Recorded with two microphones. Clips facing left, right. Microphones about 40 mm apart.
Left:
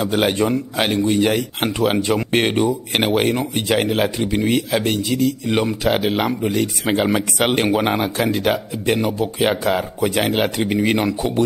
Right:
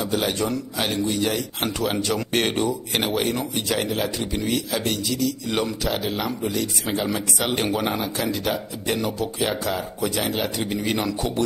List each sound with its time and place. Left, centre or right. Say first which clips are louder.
0.0 s speech: left 6 dB; left
2.9 s speech: left 6 dB; left
5.5 s speech: left 5 dB; left
5.9 s speech: left 7 dB; left
7.5 s speech: left 5 dB; left
10.6 s speech: left 6 dB; left